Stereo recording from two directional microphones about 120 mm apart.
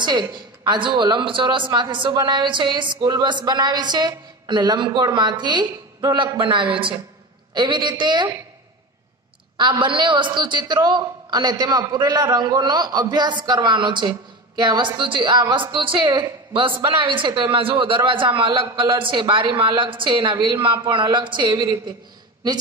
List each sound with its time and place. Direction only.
0.0 s speech: 35° right (ahead or behind)
9.6 s a woman's voice: 40° right (ahead or behind)